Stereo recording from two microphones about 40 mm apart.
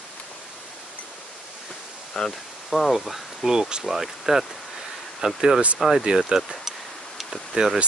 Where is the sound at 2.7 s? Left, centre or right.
Centre; by 6.3 s right.